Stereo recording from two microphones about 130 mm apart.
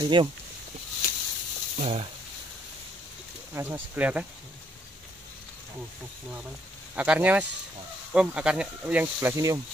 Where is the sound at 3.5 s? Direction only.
20° right (ahead or behind).